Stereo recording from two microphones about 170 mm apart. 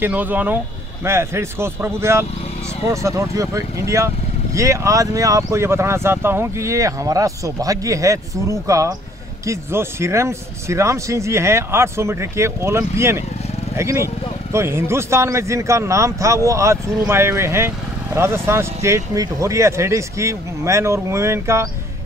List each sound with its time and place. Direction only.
0.0 s speech: 10° right (ahead or behind)